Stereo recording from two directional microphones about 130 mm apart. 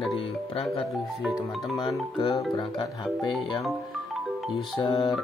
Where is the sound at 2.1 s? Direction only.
35° left (ahead or behind).